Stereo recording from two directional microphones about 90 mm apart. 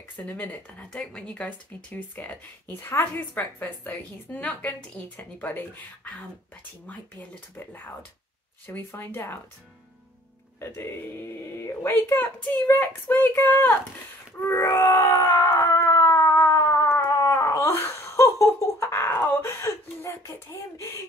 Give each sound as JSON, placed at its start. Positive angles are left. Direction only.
{"t": 0.3, "sound": "speech", "side_deg": 20}
{"t": 10.6, "sound": "speech", "side_deg": 30}
{"t": 14.4, "sound": "wail", "side_deg": 30}